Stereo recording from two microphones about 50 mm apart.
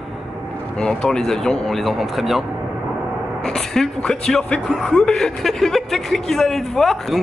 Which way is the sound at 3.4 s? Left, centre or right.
Centre.